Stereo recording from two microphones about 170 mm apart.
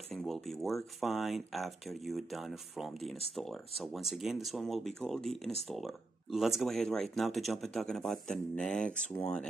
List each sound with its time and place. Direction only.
0.1 s speech: centre (ahead or behind)